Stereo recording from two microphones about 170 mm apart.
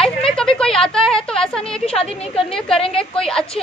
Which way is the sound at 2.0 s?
35° left (ahead or behind).